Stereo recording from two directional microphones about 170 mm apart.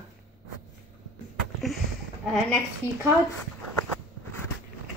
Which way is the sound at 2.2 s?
Centre (ahead or behind).